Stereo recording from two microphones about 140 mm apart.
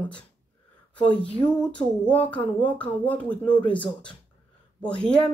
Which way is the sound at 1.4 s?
35° left (ahead or behind).